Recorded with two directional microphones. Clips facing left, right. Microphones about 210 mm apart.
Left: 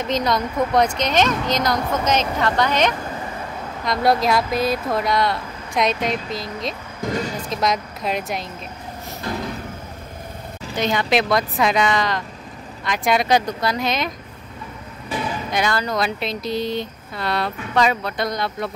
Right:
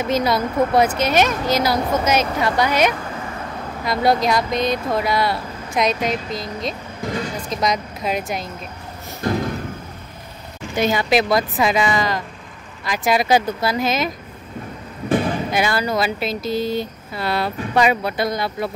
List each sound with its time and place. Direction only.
0.0 s speech: 5° right (ahead or behind)
10.8 s speech: 5° right (ahead or behind)
15.0 s music: 50° right (ahead or behind)
15.5 s speech: 5° right (ahead or behind)